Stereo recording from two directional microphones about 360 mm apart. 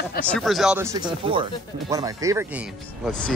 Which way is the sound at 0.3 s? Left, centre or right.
Centre.